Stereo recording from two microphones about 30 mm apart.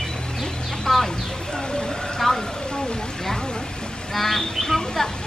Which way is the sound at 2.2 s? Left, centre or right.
Centre.